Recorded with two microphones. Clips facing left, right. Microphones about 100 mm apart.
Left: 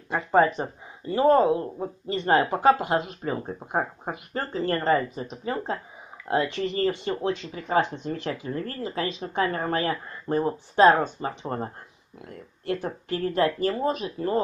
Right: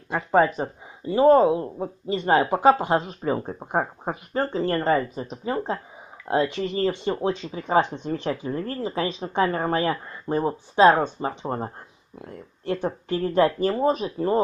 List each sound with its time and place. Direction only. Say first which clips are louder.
0.6 s speech: right 2 dB; 15° right (ahead or behind)